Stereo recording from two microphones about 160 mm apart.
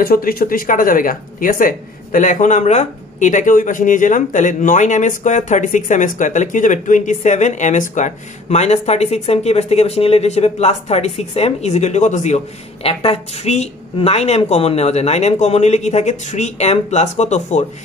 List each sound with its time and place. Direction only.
0.0 s speech: 65° left (ahead or behind); by 12.4 s 50° left (ahead or behind)
12.8 s speech: 40° left (ahead or behind)